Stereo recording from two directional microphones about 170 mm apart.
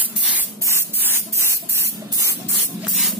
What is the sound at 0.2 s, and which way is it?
Spray, 10° right (ahead or behind).